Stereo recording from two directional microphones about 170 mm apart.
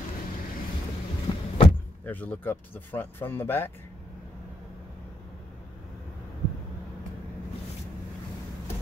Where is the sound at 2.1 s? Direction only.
10° left (ahead or behind).